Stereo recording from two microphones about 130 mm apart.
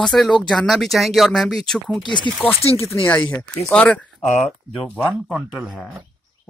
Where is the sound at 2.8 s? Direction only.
20° left (ahead or behind); by 5.7 s centre (ahead or behind).